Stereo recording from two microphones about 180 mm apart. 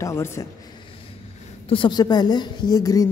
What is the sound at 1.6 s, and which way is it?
A woman's voice, 30° left (ahead or behind).